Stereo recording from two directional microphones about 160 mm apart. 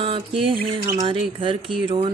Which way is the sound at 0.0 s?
35° right (ahead or behind).